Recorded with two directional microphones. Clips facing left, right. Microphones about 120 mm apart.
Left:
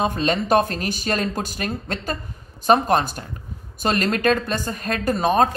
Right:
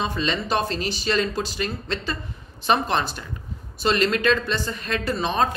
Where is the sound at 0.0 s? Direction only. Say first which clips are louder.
Left 4 dB; 50° left (ahead or behind).